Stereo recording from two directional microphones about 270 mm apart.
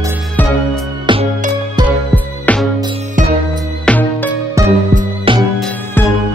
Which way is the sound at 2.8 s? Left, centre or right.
Right.